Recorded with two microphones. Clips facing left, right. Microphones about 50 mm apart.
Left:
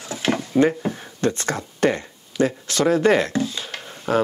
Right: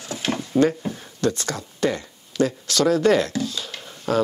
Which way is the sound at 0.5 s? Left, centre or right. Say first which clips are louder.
Left 1 dB; centre.